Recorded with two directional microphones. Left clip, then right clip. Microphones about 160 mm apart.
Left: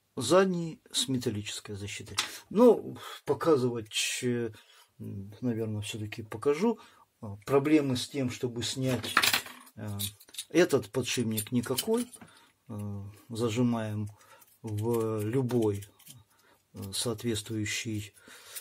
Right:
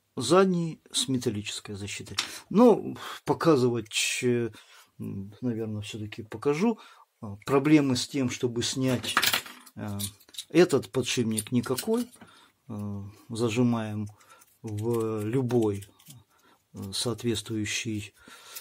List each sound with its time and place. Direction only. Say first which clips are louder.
0.1 s speech: right 2 dB; 15° right (ahead or behind)
2.5 s speech: right 2 dB; 45° right (ahead or behind)
3.9 s speech: right 4 dB; 30° right (ahead or behind)
5.4 s speech: right 1 dB; 15° right (ahead or behind)
6.4 s speech: right 1 dB; 30° right (ahead or behind)
7.4 s speech: right 3 dB; 40° right (ahead or behind)
10.5 s speech: right 3 dB; 20° right (ahead or behind)
14.6 s speech: right 1 dB; 10° right (ahead or behind)
16.9 s speech: right 3 dB; 20° right (ahead or behind)